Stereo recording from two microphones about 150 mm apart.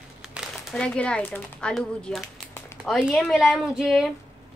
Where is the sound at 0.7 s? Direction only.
5° left (ahead or behind).